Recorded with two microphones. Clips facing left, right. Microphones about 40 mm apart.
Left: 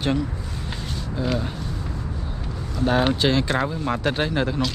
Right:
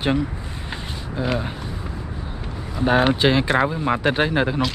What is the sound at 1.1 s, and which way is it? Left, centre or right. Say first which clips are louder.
Speech: right 2 dB; centre.